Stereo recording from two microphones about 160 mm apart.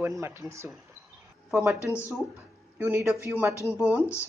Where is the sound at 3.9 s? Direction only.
10° right (ahead or behind).